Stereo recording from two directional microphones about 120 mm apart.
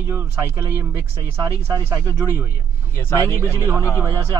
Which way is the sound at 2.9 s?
20° left (ahead or behind).